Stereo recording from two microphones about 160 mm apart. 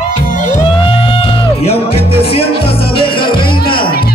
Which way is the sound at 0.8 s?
35° left (ahead or behind).